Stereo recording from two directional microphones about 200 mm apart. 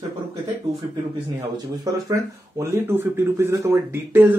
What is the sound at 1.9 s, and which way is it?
A man's voice, 20° right (ahead or behind).